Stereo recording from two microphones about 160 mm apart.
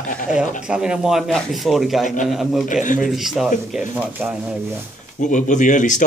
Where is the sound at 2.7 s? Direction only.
55° left (ahead or behind).